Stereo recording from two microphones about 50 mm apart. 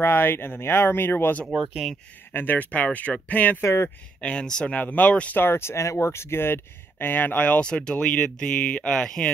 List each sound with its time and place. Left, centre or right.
0.0 s speech: left
2.3 s speech: left
3.6 s speech: left
4.2 s speech: centre
4.7 s speech: left
5.3 s speech: left
7.6 s speech: centre